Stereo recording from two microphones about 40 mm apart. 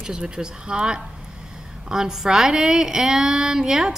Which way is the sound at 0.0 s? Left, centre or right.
Centre.